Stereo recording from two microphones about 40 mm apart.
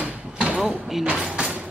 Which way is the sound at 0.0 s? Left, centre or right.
Right.